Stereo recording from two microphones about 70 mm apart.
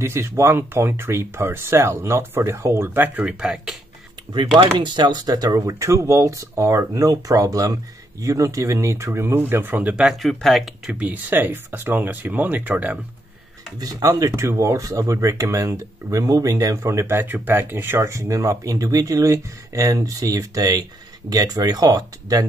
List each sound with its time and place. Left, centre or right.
0.0 s speech: right
3.3 s speech: centre
4.7 s speech: right
10.2 s speech: centre
10.9 s speech: right
13.7 s speech: right
18.0 s speech: right